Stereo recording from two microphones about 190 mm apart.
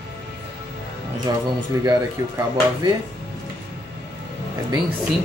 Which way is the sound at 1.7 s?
20° right (ahead or behind).